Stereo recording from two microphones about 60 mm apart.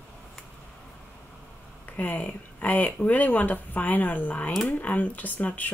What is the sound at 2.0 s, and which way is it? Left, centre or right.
Speech, left.